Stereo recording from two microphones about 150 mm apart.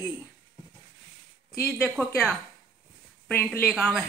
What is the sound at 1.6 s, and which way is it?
Speech, centre (ahead or behind).